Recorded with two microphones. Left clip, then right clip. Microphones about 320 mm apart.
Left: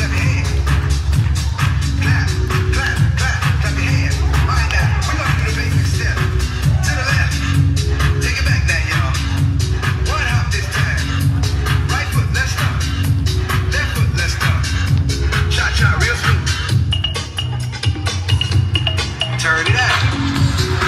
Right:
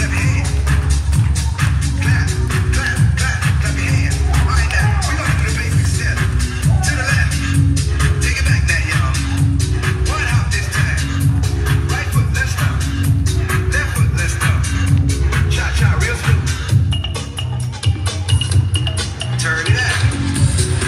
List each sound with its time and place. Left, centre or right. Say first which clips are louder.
8.0 s music: even; left
13.5 s music: right 1 dB; left
19.4 s music: left 3 dB; centre